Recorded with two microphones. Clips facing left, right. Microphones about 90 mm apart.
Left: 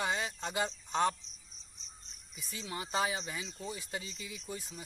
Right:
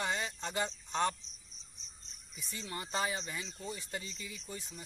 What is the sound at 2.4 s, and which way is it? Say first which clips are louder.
Speech: left 1 dB; 5° left (ahead or behind).